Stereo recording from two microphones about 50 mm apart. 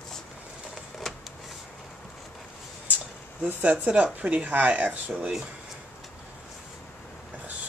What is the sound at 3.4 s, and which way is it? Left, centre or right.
Speech, right.